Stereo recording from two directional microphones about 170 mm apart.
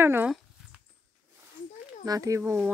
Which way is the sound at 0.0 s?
15° right (ahead or behind).